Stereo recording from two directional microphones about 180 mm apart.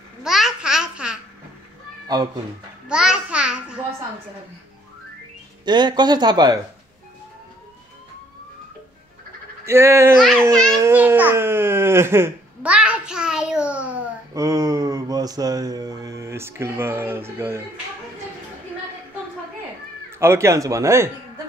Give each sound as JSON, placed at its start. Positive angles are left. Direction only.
{"t": 0.2, "sound": "babbling", "side_deg": -5}
{"t": 2.9, "sound": "babbling", "side_deg": -5}
{"t": 5.7, "sound": "speech", "side_deg": -25}
{"t": 9.7, "sound": "speech", "side_deg": -15}
{"t": 10.7, "sound": "a sound", "side_deg": -15}
{"t": 14.3, "sound": "speech", "side_deg": -20}
{"t": 20.1, "sound": "speech", "side_deg": -15}